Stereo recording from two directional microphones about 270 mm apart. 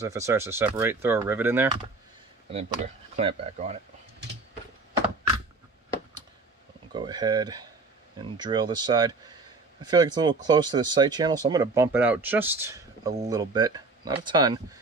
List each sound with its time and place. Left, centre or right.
0.0 s speech: centre
2.5 s speech: right
6.9 s speech: centre